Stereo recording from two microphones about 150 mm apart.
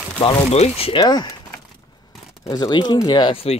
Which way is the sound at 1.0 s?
25° left (ahead or behind).